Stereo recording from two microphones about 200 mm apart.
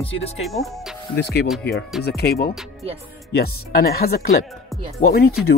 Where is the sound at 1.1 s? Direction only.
55° left (ahead or behind).